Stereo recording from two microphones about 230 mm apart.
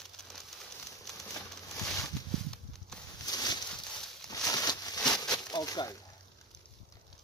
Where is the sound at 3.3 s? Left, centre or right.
Centre.